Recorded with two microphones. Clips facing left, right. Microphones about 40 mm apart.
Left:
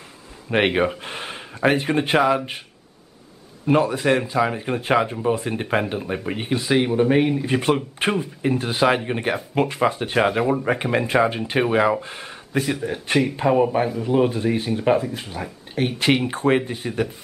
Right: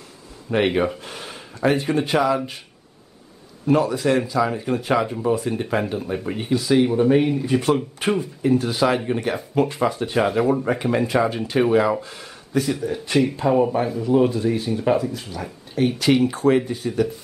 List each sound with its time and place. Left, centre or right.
0.5 s speech: left
3.6 s speech: left
13.4 s speech: left
14.3 s speech: left